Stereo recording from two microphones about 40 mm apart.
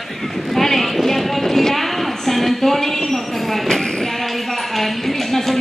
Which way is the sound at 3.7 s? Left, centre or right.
Centre.